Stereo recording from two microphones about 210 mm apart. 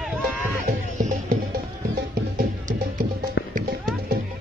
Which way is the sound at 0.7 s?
40° right (ahead or behind).